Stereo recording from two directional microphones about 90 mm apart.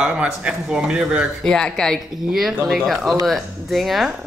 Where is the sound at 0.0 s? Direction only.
10° right (ahead or behind).